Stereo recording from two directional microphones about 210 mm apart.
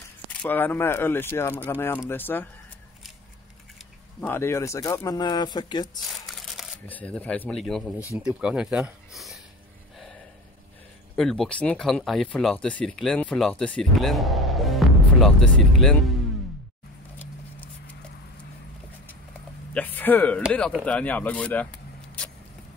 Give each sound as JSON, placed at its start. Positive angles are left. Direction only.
{"t": 0.3, "sound": "speech", "side_deg": 5}
{"t": 4.3, "sound": "speech", "side_deg": 10}
{"t": 6.1, "sound": "speech", "side_deg": 0}
{"t": 11.1, "sound": "speech", "side_deg": 0}
{"t": 19.7, "sound": "speech", "side_deg": 10}